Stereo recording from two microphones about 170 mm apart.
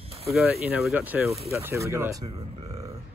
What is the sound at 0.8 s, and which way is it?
Speech, 10° right (ahead or behind).